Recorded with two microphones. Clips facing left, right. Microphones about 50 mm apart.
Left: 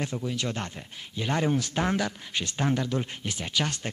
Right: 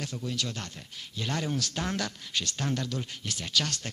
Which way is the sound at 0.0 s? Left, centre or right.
Left.